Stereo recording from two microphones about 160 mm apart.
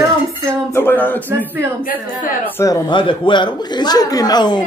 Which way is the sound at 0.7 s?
10° left (ahead or behind).